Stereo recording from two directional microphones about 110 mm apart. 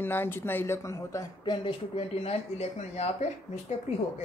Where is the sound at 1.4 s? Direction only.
40° left (ahead or behind).